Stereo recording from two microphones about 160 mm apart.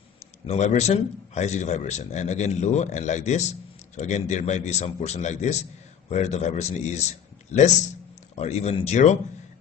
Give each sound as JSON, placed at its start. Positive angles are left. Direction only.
{"t": 0.5, "sound": "a man's voice", "side_deg": 45}